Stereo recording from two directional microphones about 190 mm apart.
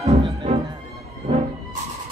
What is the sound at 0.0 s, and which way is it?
Music, 30° right (ahead or behind).